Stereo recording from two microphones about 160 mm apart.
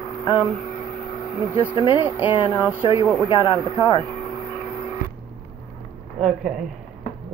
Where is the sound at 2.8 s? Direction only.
30° left (ahead or behind).